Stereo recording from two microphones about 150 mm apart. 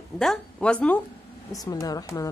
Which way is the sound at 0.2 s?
5° left (ahead or behind).